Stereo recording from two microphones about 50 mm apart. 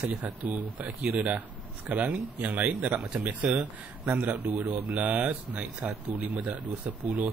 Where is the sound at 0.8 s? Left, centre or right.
Centre.